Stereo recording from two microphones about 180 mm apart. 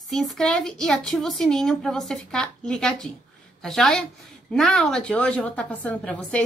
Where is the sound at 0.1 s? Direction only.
Centre (ahead or behind).